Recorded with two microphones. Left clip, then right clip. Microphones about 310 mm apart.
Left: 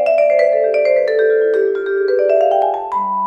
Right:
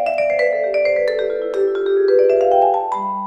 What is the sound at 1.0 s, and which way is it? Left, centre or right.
Music, centre.